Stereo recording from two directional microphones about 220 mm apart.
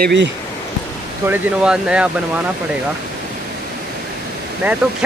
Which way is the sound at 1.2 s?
5° right (ahead or behind).